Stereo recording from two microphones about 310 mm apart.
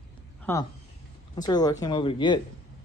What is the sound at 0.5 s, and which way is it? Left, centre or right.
Speech, centre.